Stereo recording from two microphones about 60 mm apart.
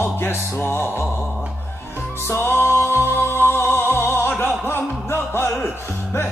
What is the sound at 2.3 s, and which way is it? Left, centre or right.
Music, left.